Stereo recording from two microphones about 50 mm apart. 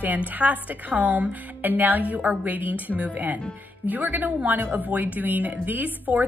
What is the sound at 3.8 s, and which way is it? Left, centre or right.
A woman's voice, right.